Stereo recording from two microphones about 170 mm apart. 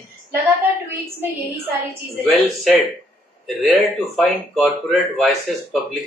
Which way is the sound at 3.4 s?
Centre (ahead or behind).